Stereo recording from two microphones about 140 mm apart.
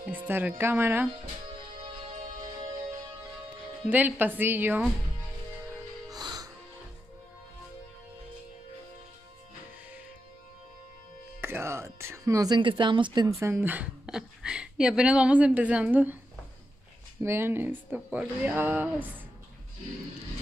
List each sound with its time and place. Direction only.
0.0 s speech: 15° right (ahead or behind)
3.9 s speech: 15° right (ahead or behind)
6.0 s music: 30° right (ahead or behind)
11.4 s a woman's voice: 20° right (ahead or behind)
13.4 s speech: 15° right (ahead or behind)
17.2 s speech: 15° right (ahead or behind)